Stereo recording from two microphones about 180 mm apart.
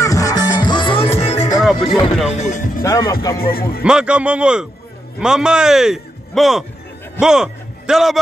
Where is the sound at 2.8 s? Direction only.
15° left (ahead or behind).